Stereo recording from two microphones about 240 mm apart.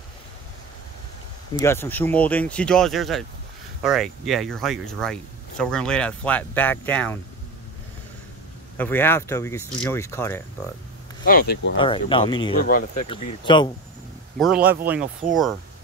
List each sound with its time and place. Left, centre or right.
1.6 s speech: centre
8.7 s speech: centre
11.2 s speech: left
11.8 s speech: left
14.4 s speech: centre